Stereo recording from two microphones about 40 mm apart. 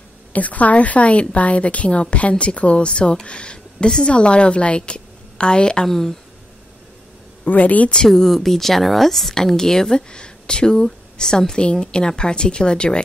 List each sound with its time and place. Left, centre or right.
0.3 s a woman's voice: left
5.9 s speech: centre
7.4 s a woman's voice: left
8.1 s speech: centre; by 13.0 s left